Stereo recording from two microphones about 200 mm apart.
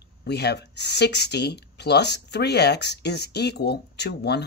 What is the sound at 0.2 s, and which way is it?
Speech, 55° left (ahead or behind).